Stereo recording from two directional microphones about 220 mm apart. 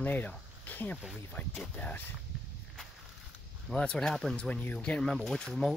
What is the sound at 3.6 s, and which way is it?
Speech, 5° left (ahead or behind).